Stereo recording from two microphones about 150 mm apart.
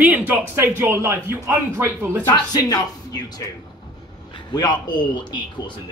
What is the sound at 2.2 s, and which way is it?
Speech, 25° left (ahead or behind).